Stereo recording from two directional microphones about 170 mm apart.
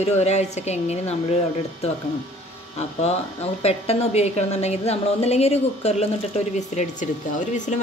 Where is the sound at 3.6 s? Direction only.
35° left (ahead or behind).